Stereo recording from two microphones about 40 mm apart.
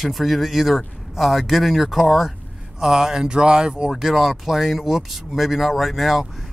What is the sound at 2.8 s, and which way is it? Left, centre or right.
A man's voice, centre.